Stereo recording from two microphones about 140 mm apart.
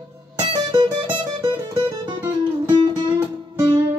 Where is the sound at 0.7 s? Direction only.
30° right (ahead or behind).